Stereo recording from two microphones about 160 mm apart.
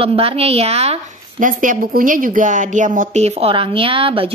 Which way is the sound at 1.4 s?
55° right (ahead or behind).